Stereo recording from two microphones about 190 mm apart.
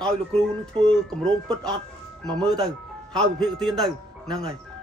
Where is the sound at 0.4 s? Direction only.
5° left (ahead or behind).